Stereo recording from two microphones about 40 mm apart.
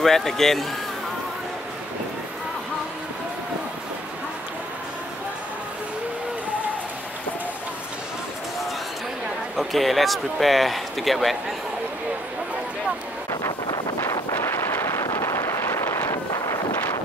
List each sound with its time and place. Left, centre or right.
0.0 s a man's voice: centre
9.6 s speech: centre
14.0 s wind noise: left